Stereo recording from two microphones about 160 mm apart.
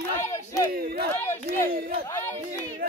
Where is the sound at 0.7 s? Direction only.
65° right (ahead or behind).